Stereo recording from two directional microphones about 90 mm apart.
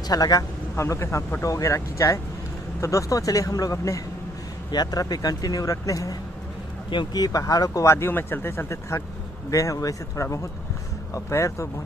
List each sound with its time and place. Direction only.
0.1 s speech: 45° left (ahead or behind)
4.6 s speech: 50° left (ahead or behind)
7.2 s speech: 45° left (ahead or behind)